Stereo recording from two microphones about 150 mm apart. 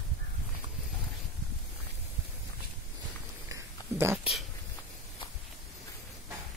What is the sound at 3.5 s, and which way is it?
Cat, 15° right (ahead or behind).